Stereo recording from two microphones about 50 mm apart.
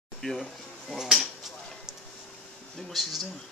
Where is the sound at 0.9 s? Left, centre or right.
Centre.